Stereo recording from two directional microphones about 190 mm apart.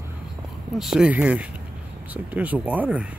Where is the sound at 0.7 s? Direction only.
Centre (ahead or behind).